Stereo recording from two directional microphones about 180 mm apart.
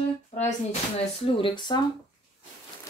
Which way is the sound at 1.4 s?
25° left (ahead or behind).